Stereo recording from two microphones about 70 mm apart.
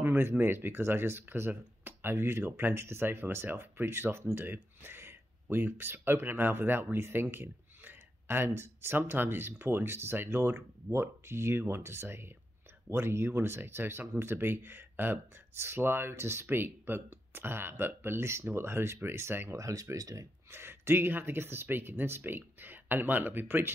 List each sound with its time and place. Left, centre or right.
0.0 s speech: right
19.5 s speech: right
20.5 s speech: right